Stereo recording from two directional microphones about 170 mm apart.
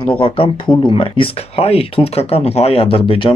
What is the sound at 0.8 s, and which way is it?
Speech, 30° left (ahead or behind).